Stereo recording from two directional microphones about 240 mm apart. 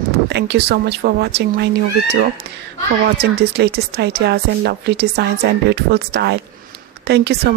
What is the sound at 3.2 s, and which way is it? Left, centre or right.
Speech, right.